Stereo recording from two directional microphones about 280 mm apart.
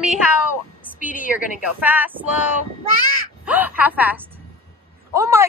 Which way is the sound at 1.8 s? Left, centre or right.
Centre.